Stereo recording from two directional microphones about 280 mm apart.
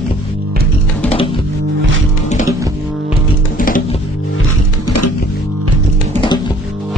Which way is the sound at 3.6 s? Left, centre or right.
Left.